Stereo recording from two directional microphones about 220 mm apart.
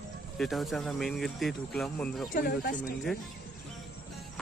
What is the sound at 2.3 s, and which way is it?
Speech, 40° left (ahead or behind).